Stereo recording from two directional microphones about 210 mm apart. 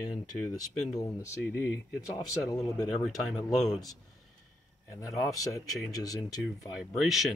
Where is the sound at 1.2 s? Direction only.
10° left (ahead or behind).